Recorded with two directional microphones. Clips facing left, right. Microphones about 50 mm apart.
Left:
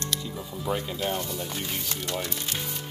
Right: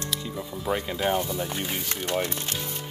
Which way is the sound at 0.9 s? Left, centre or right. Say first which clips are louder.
Right 4 dB; centre.